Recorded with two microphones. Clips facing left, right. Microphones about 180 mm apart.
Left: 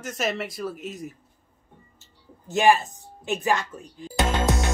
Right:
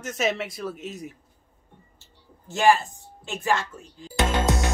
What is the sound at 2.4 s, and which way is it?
A woman's voice, 20° left (ahead or behind).